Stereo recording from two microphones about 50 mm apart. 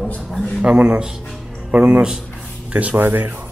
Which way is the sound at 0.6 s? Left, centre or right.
Right.